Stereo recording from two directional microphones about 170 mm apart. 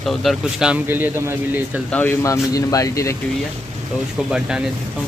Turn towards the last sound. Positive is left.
turn(degrees=-5)  # may be behind; listen again after turning